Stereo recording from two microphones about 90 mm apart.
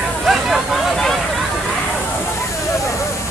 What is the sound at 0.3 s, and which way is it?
Vehicle, centre (ahead or behind).